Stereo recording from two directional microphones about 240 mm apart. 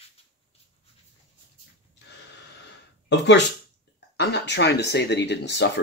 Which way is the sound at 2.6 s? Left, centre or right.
Left.